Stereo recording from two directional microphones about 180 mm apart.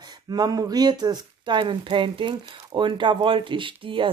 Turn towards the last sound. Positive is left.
turn(degrees=-30)  # may be behind; listen again after turning